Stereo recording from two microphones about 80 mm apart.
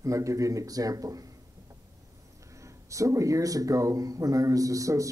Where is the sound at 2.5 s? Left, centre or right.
Right.